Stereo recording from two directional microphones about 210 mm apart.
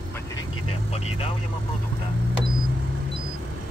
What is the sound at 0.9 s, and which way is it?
Speech, 30° left (ahead or behind).